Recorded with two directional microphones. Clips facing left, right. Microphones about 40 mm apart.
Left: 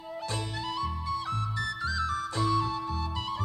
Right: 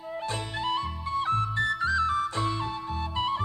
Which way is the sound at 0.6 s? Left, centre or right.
Right.